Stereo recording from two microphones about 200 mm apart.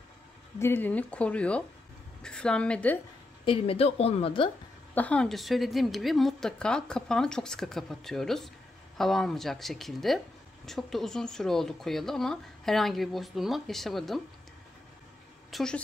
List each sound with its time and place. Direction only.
0.6 s speech: 10° left (ahead or behind)
3.4 s a woman's voice: 25° left (ahead or behind)
4.9 s speech: 5° left (ahead or behind)
15.5 s speech: 5° left (ahead or behind)